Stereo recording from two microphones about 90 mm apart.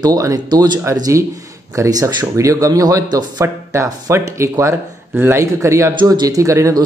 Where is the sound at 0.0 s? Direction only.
40° right (ahead or behind).